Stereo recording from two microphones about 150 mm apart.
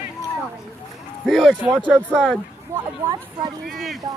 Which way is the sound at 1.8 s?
10° right (ahead or behind).